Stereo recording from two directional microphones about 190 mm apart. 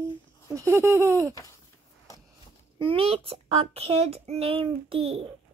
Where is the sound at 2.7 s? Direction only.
30° right (ahead or behind).